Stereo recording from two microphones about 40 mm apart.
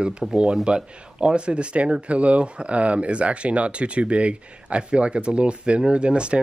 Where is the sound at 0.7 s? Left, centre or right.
Right.